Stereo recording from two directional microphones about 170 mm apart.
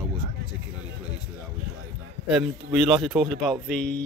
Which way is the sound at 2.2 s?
5° right (ahead or behind).